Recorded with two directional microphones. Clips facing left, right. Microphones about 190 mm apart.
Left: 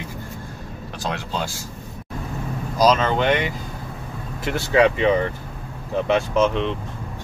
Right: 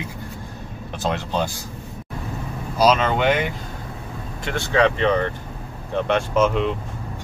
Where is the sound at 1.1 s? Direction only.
20° right (ahead or behind).